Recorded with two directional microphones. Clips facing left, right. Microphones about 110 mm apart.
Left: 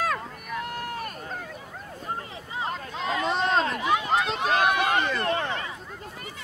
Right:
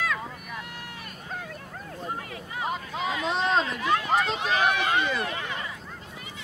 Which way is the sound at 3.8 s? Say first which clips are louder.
Left 1 dB; 15° left (ahead or behind).